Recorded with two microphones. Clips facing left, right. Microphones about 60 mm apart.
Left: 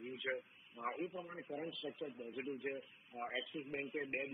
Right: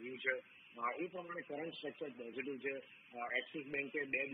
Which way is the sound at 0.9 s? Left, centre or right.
Right.